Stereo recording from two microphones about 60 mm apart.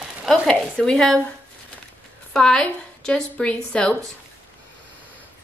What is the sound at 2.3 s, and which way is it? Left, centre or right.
A woman's voice, centre.